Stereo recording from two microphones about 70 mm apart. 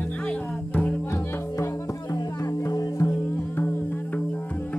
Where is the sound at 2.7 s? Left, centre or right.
Left.